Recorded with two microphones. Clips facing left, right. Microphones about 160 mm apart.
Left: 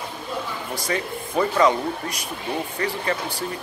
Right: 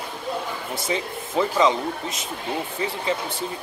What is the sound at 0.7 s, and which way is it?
Speech, 25° right (ahead or behind).